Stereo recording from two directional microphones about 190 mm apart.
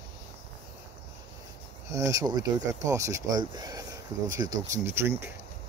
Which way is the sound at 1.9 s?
15° right (ahead or behind).